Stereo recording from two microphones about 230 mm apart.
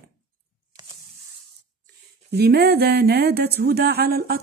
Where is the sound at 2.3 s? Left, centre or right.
Right.